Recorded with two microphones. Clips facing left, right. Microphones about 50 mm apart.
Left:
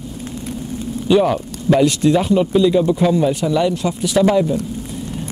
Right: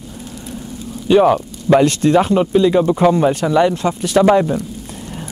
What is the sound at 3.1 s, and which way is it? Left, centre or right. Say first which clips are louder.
Speech: right 2 dB; right.